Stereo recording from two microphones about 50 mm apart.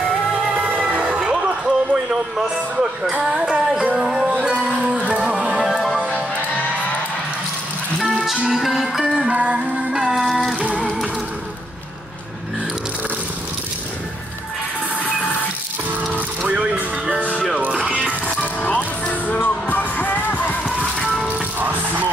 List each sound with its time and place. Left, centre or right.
0.4 s music: centre
0.7 s music: right
5.6 s music: centre
5.9 s music: right
8.3 s music: centre
9.3 s music: right
9.8 s music: centre
10.2 s a sound: centre
10.6 s music: right
15.9 s vehicle: right
17.2 s music: right
18.2 s music: left
21.5 s music: right